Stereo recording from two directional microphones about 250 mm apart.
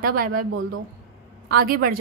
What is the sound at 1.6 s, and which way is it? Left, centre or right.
Speech, right.